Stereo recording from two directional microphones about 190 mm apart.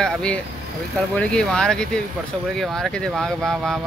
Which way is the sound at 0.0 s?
5° left (ahead or behind).